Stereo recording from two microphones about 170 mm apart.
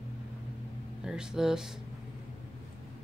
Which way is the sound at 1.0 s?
5° right (ahead or behind).